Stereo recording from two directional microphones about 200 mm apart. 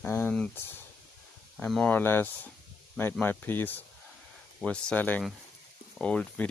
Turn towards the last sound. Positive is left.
turn(degrees=5)  # may be behind; listen again after turning